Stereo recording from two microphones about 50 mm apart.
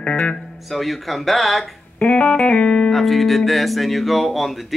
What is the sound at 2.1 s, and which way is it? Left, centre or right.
Speech, left.